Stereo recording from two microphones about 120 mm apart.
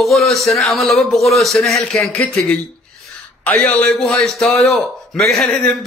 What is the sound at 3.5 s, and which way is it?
A man's voice, 10° left (ahead or behind).